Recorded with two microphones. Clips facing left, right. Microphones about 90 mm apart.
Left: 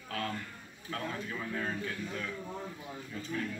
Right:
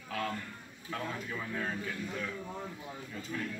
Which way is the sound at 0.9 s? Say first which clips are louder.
Even; 5° right (ahead or behind).